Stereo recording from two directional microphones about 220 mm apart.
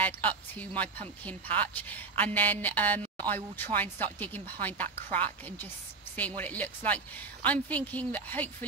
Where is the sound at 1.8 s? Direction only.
5° left (ahead or behind).